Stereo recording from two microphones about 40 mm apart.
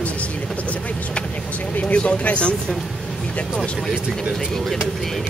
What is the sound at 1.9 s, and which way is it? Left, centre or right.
Speech, left.